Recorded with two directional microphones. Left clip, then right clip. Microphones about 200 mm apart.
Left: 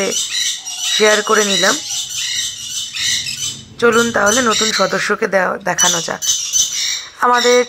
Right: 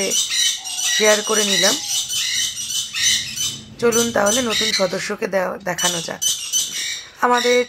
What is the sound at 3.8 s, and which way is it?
Speech, 20° left (ahead or behind).